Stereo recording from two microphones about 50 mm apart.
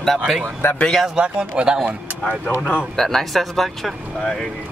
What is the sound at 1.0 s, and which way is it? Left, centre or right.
Speech, centre.